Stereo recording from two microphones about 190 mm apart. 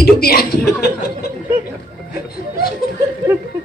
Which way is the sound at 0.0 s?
55° left (ahead or behind).